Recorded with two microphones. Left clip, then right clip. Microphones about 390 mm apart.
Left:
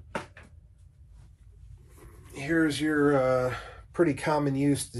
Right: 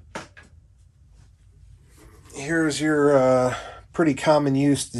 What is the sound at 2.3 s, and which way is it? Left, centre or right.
Speech, centre.